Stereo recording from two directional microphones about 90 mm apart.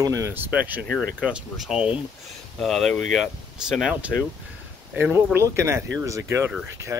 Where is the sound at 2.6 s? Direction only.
5° left (ahead or behind).